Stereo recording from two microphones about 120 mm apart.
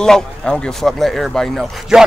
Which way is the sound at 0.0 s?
5° left (ahead or behind).